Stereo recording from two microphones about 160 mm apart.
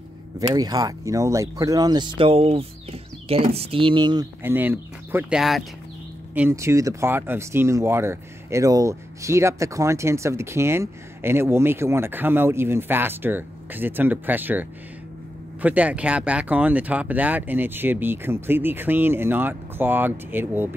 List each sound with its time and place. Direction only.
0.4 s speech: 25° right (ahead or behind)
4.4 s speech: 10° right (ahead or behind)
6.5 s speech: 20° right (ahead or behind)